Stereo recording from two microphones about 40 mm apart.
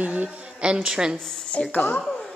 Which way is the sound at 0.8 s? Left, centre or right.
Centre.